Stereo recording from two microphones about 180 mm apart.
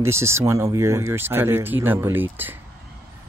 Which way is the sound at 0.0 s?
15° right (ahead or behind).